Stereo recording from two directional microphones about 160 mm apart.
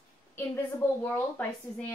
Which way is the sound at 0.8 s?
15° left (ahead or behind).